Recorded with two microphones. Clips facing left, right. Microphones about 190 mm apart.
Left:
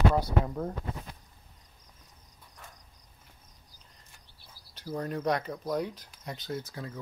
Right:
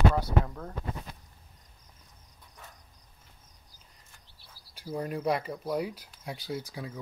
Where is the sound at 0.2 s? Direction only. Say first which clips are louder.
Left 1 dB; 20° left (ahead or behind).